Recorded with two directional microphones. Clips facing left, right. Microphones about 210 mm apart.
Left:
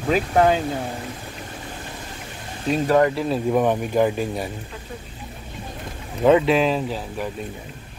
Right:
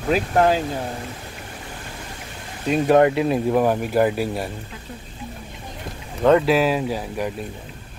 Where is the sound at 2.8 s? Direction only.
20° right (ahead or behind).